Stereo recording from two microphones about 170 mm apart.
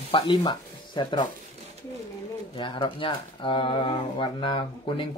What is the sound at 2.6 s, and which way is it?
Speech, 30° left (ahead or behind).